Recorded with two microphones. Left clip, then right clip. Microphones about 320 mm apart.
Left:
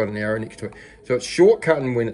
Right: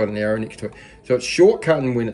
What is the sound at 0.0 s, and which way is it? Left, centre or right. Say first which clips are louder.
Speech: right 2 dB; centre.